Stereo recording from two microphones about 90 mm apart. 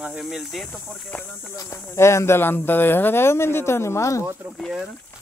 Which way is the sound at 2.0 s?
30° left (ahead or behind).